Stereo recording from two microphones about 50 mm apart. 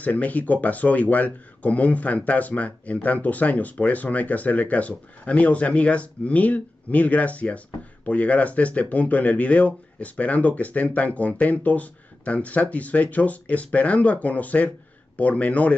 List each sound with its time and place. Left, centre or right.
0.0 s speech: left